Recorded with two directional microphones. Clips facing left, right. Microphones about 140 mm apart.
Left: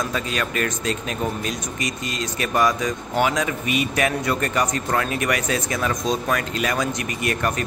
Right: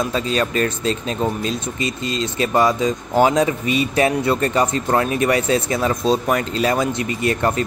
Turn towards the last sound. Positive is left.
turn(degrees=-25)  # may be behind; listen again after turning